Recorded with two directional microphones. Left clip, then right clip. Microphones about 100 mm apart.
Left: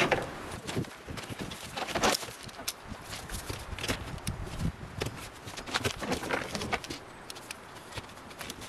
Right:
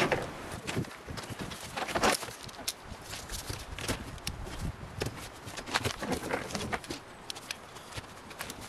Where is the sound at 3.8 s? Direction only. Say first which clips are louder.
Left 2 dB; 15° left (ahead or behind).